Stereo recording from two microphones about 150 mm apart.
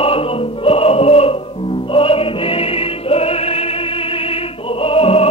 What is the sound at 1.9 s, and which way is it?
Opera, 40° left (ahead or behind).